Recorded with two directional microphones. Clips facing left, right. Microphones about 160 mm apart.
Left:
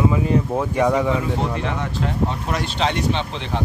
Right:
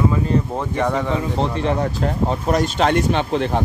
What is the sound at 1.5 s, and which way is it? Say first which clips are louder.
Speech: right 4 dB; 35° right (ahead or behind).